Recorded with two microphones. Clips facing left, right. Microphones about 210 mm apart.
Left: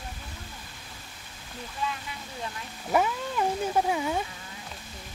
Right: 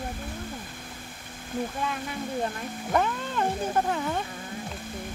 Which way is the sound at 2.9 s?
5° left (ahead or behind).